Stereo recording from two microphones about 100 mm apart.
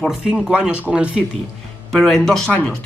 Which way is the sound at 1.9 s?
5° left (ahead or behind).